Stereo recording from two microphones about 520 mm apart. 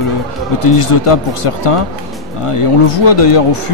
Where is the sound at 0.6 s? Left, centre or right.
Left.